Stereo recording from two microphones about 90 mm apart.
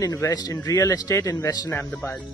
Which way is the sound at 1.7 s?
25° left (ahead or behind).